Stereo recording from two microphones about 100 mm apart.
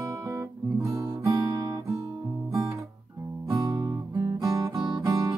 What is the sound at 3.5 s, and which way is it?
Guitar, 40° right (ahead or behind).